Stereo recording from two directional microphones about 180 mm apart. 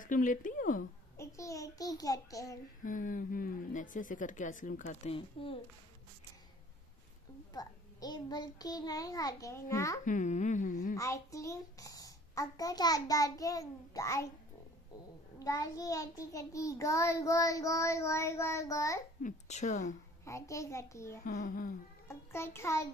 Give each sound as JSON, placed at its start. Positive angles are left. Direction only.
{"t": 0.0, "sound": "a woman's voice", "side_deg": 45}
{"t": 1.1, "sound": "a child's voice", "side_deg": 15}
{"t": 2.8, "sound": "a woman's voice", "side_deg": 50}
{"t": 5.1, "sound": "a child's voice", "side_deg": 30}
{"t": 7.5, "sound": "a child's voice", "side_deg": 20}
{"t": 10.0, "sound": "a woman's voice", "side_deg": 45}
{"t": 11.0, "sound": "a child's voice", "side_deg": 15}
{"t": 15.3, "sound": "a child's voice", "side_deg": 20}
{"t": 19.2, "sound": "a woman's voice", "side_deg": 40}
{"t": 20.2, "sound": "a child's voice", "side_deg": 15}
{"t": 21.3, "sound": "a woman's voice", "side_deg": 45}
{"t": 22.0, "sound": "a child's voice", "side_deg": 15}